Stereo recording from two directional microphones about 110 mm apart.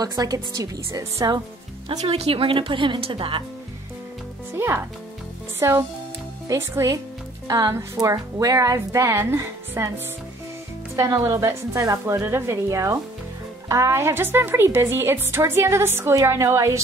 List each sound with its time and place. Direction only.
0.0 s a woman's voice: 35° right (ahead or behind)
2.0 s speech: 60° right (ahead or behind)
4.6 s speech: 20° right (ahead or behind)
11.1 s speech: 25° right (ahead or behind)